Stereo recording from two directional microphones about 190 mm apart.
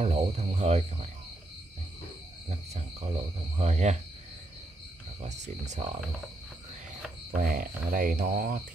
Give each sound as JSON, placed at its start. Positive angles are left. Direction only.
{"t": 0.0, "sound": "speech", "side_deg": -35}
{"t": 2.5, "sound": "speech", "side_deg": -35}
{"t": 5.2, "sound": "speech", "side_deg": -35}
{"t": 7.2, "sound": "speech", "side_deg": -45}